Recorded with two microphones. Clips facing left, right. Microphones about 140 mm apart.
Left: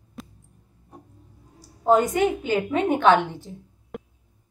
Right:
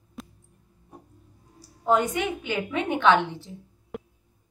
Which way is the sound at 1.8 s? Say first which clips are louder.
Left 5 dB; 40° left (ahead or behind).